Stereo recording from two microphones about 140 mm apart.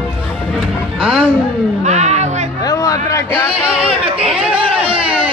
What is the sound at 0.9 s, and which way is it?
Speech, 5° right (ahead or behind).